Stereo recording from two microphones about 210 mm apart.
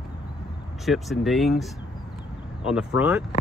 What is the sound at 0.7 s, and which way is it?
Speech, centre (ahead or behind).